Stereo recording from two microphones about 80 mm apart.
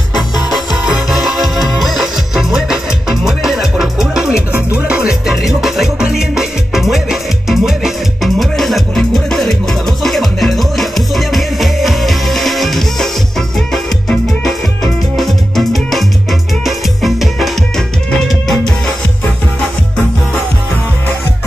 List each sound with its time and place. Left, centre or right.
0.5 s music: centre
4.5 s music: right
4.8 s music: centre